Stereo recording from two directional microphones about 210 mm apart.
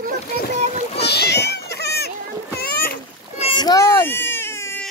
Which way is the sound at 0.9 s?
50° left (ahead or behind).